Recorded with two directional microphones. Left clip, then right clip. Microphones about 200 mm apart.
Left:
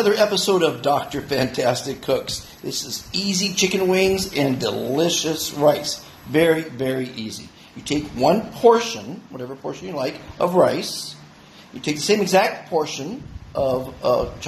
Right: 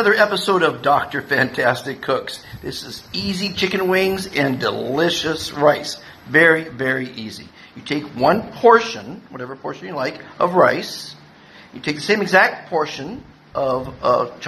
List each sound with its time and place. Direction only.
0.0 s a man's voice: centre (ahead or behind)
13.6 s a man's voice: centre (ahead or behind)